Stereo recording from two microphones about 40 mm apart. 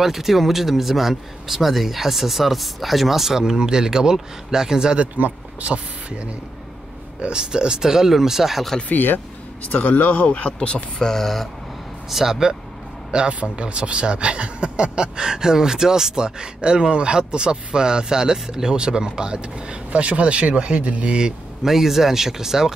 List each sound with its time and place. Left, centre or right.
0.0 s speech: centre
4.9 s speech: right
5.7 s speech: right; by 8.6 s centre
8.8 s speech: left
11.0 s speech: centre
12.1 s speech: centre
13.3 s speech: right
21.6 s speech: centre